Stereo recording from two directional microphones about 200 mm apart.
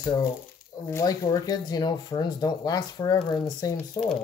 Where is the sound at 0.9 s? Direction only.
15° left (ahead or behind).